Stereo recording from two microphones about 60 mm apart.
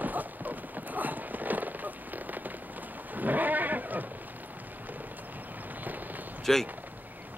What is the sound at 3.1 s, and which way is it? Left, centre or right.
Goat, right.